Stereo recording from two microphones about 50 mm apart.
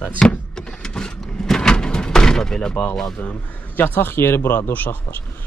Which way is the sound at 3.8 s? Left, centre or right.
Left.